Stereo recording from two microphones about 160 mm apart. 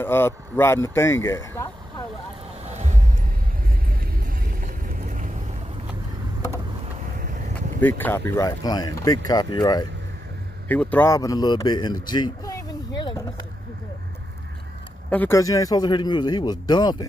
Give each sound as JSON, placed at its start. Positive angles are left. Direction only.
{"t": 0.0, "sound": "speech", "side_deg": 15}
{"t": 2.7, "sound": "music", "side_deg": -45}
{"t": 4.0, "sound": "vehicle", "side_deg": -60}
{"t": 7.2, "sound": "a sound", "side_deg": -55}
{"t": 7.8, "sound": "speech", "side_deg": 10}
{"t": 8.3, "sound": "a man's voice", "side_deg": 20}
{"t": 10.7, "sound": "speech", "side_deg": 10}
{"t": 15.0, "sound": "a man's voice", "side_deg": 10}